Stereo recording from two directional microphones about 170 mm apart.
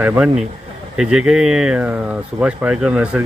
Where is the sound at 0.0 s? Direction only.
10° right (ahead or behind).